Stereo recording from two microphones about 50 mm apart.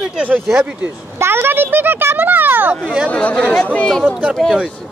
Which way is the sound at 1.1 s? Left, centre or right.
Right.